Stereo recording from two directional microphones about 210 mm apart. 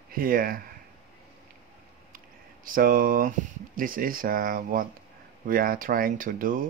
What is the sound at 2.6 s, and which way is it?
Speech, 40° right (ahead or behind).